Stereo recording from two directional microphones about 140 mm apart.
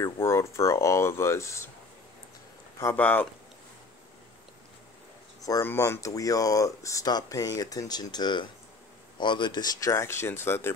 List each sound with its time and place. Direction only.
0.0 s speech: 20° left (ahead or behind)
2.8 s speech: 15° left (ahead or behind)
5.4 s speech: 25° left (ahead or behind)